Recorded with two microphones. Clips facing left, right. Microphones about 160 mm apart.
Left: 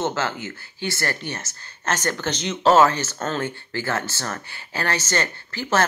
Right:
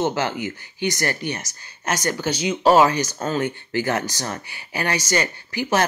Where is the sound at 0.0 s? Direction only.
15° right (ahead or behind).